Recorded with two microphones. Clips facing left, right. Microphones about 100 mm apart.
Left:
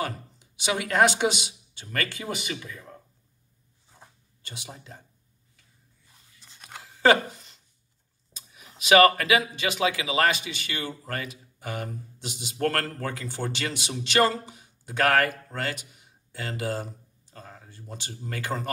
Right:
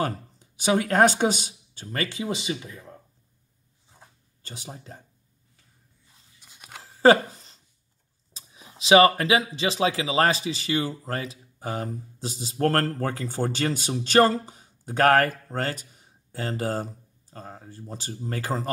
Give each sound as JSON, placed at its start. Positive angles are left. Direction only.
{"t": 0.0, "sound": "speech", "side_deg": -40}
{"t": 1.9, "sound": "speech", "side_deg": -25}
{"t": 4.4, "sound": "speech", "side_deg": -35}
{"t": 6.4, "sound": "a sound", "side_deg": -10}
{"t": 6.8, "sound": "a sound", "side_deg": -35}
{"t": 8.3, "sound": "speech", "side_deg": -30}